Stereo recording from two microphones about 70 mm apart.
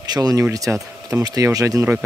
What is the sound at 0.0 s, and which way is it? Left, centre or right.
A man's voice, right.